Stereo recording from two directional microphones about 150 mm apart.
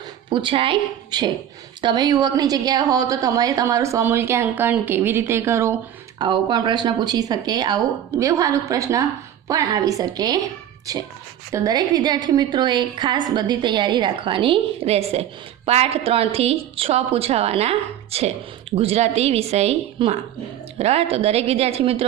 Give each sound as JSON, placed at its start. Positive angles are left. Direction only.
{"t": 0.3, "sound": "a woman's voice", "side_deg": -35}
{"t": 6.1, "sound": "a woman's voice", "side_deg": -30}